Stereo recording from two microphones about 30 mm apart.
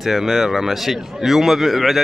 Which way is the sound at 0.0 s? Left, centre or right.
Centre.